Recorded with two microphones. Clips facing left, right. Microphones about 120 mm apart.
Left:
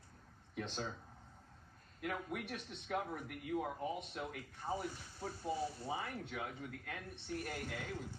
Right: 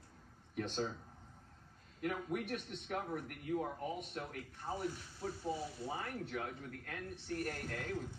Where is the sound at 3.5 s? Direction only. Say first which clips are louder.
Even; 5° left (ahead or behind).